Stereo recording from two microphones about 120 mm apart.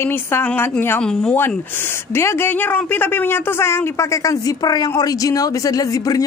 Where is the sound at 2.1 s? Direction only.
20° left (ahead or behind).